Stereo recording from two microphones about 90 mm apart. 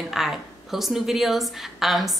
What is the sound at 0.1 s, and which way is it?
A woman's voice, 5° right (ahead or behind).